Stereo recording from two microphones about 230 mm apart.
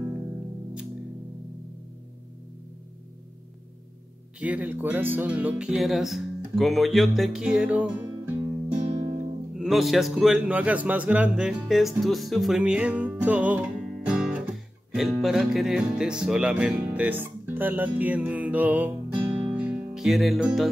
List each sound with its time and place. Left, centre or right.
4.4 s speech: centre
9.6 s speech: centre